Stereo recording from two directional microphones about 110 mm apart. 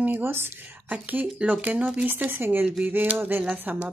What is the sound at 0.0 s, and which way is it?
Speech, 20° right (ahead or behind).